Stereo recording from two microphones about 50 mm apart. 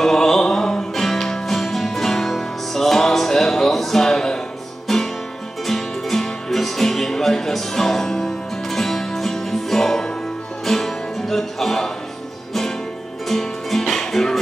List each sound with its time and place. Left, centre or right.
0.0 s music: centre
13.3 s music: centre